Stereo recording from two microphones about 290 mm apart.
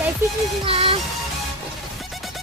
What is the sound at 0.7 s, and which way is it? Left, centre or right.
Music, centre.